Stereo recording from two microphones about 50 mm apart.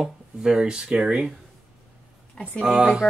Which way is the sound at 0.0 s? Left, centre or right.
Centre.